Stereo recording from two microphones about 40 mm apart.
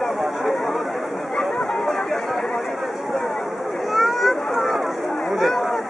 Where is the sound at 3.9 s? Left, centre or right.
Centre.